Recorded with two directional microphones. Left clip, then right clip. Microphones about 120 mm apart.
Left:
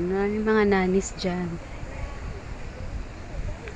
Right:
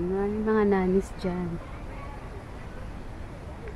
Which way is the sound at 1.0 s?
10° right (ahead or behind).